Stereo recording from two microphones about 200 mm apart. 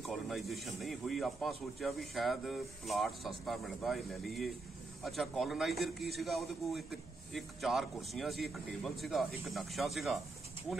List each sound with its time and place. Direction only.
0.0 s a man's voice: centre (ahead or behind)